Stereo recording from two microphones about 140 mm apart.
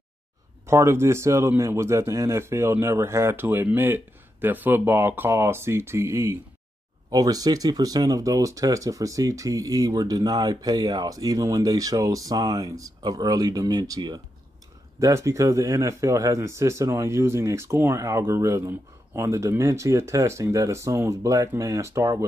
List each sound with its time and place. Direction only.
0.7 s speech: 20° right (ahead or behind)